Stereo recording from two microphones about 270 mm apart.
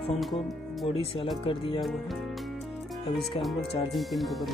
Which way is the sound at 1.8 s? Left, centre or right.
Centre.